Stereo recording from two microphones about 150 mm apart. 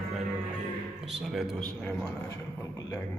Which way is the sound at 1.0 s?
Centre (ahead or behind).